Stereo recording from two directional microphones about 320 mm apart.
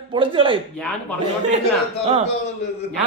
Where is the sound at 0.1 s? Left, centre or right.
Centre.